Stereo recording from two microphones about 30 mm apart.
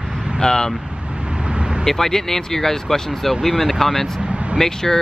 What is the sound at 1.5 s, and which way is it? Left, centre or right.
Vehicle, right.